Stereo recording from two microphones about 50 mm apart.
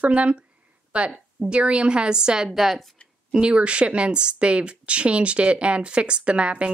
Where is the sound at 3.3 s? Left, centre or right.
Centre.